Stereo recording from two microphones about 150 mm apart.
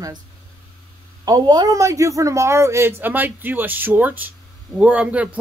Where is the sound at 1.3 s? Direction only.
25° right (ahead or behind).